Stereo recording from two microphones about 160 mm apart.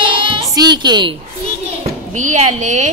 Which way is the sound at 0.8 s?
25° right (ahead or behind).